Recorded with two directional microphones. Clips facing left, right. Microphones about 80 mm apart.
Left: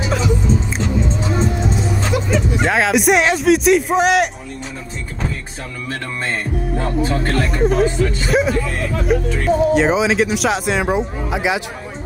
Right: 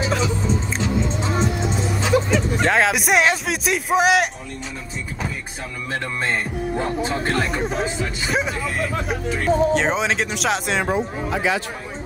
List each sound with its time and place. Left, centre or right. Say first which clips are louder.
2.6 s speech: left 4 dB; centre
6.8 s speech: left 4 dB; right
7.3 s speech: left 6 dB; centre
10.9 s speech: left 3 dB; centre